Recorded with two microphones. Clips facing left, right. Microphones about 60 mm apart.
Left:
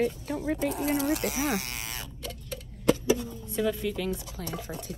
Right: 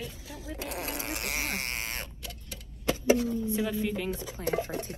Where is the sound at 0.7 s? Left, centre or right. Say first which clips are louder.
Left 8 dB; right.